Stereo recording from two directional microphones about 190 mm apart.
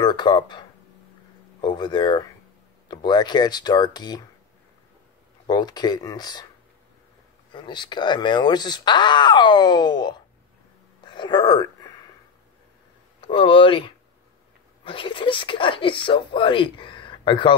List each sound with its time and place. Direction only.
0.0 s speech: 25° left (ahead or behind)
5.5 s speech: 20° left (ahead or behind)
7.5 s speech: 25° left (ahead or behind)
11.1 s a sound: 25° left (ahead or behind)
13.2 s speech: 25° left (ahead or behind)